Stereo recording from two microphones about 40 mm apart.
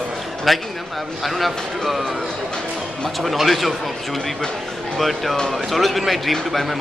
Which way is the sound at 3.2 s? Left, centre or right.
Centre.